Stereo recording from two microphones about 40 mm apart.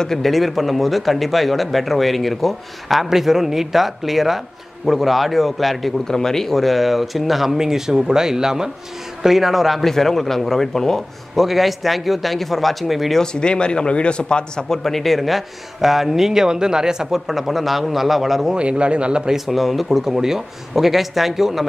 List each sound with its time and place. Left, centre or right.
0.0 s a man's voice: centre
0.3 s speech: centre
6.0 s a man's voice: centre
11.3 s speech: centre
13.2 s speech: left
14.8 s speech: centre
18.5 s speech: right
19.3 s speech: centre